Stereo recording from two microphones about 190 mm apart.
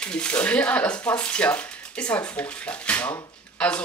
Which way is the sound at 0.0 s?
5° left (ahead or behind).